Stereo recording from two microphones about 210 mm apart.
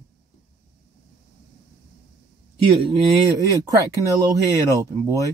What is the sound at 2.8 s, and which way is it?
Speech, 15° right (ahead or behind).